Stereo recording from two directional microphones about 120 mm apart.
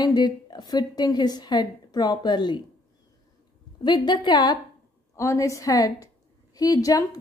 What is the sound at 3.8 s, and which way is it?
Speech, 40° left (ahead or behind).